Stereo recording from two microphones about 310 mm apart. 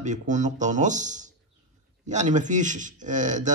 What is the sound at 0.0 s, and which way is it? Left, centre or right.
Speech, right.